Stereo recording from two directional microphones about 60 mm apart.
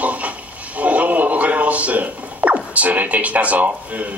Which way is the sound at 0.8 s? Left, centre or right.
Right.